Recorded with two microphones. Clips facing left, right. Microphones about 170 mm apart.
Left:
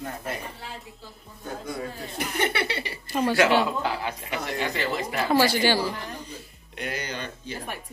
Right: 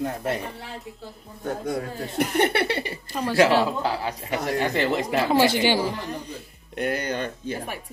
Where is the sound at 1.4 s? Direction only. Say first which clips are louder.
Right 5 dB; 65° right (ahead or behind).